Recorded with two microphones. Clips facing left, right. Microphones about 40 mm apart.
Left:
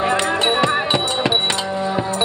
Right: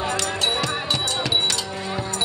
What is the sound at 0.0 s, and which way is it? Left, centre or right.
Music, left.